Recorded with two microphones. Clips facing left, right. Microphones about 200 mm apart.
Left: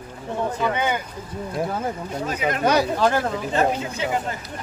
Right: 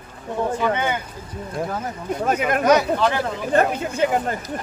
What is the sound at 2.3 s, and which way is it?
Speech, 55° right (ahead or behind).